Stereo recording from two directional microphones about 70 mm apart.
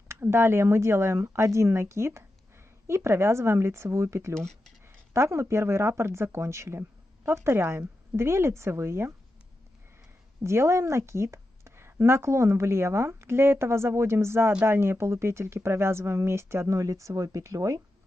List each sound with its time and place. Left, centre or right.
0.1 s speech: right
4.4 s speech: centre
4.8 s speech: right
10.4 s speech: right